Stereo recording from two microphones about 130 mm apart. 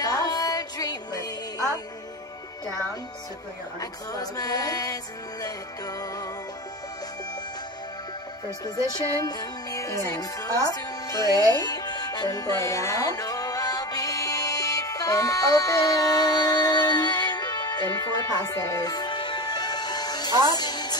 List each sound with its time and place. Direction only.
0.0 s music: 30° left (ahead or behind)
3.8 s music: 30° left (ahead or behind)
8.6 s music: 30° left (ahead or behind)